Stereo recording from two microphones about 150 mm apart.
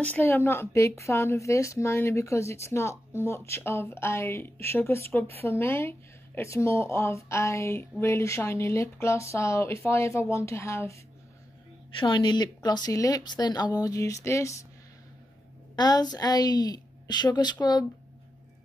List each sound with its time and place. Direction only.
0.0 s speech: 10° left (ahead or behind)
12.0 s speech: 30° left (ahead or behind)
15.7 s speech: 25° left (ahead or behind)